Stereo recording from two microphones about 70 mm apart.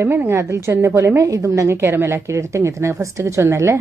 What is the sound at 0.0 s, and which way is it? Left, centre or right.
A woman's voice, right.